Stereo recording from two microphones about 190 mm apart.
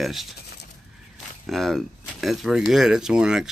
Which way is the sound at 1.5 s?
Centre (ahead or behind).